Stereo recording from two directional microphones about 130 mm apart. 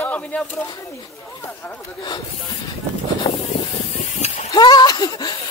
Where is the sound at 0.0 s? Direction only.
10° left (ahead or behind).